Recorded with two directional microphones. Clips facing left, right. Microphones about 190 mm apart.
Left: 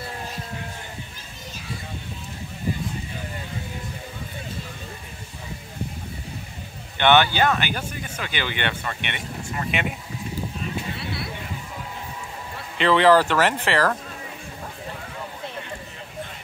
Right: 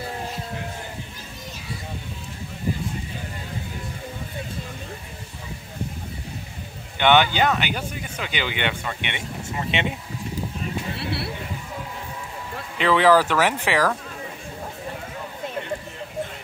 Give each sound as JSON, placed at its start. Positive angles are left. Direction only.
{"t": 7.0, "sound": "speech", "side_deg": -15}
{"t": 12.7, "sound": "speech", "side_deg": -5}